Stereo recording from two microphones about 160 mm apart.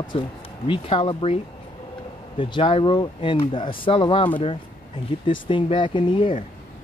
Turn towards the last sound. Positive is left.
turn(degrees=30)  # may be behind; listen again after turning